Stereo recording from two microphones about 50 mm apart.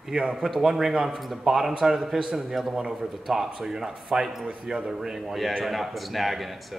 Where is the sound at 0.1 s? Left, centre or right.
Centre.